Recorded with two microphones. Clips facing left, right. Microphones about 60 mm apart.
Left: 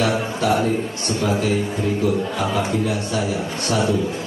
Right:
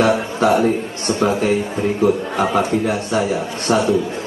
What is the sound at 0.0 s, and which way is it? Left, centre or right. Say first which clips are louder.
A man's voice: right 5 dB; right.